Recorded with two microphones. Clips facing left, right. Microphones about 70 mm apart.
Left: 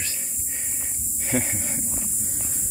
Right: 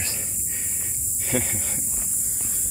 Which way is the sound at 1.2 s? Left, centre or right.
Left.